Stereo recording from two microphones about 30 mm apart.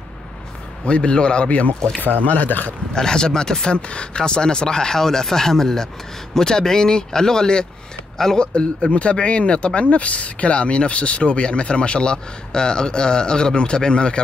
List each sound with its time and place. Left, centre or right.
0.8 s speech: left
1.8 s speech: left
2.2 s speech: left
3.0 s speech: left
3.7 s speech: left
8.5 s speech: left